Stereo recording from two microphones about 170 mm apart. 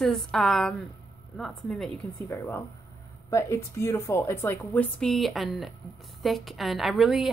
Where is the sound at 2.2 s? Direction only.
15° left (ahead or behind).